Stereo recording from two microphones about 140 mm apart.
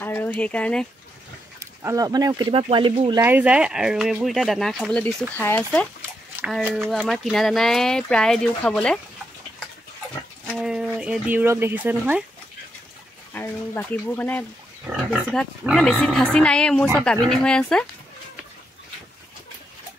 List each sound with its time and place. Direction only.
0.0 s speech: 15° left (ahead or behind)
1.8 s speech: 20° right (ahead or behind); by 3.2 s 40° right (ahead or behind)
3.2 s speech: 10° right (ahead or behind); by 9.0 s 5° left (ahead or behind)
10.4 s speech: centre (ahead or behind)
13.3 s speech: 15° left (ahead or behind)
14.9 s speech: 10° right (ahead or behind); by 17.8 s 5° left (ahead or behind)